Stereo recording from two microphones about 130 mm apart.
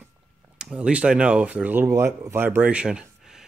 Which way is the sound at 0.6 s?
10° right (ahead or behind).